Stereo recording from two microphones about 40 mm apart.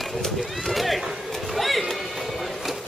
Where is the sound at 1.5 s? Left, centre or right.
Centre.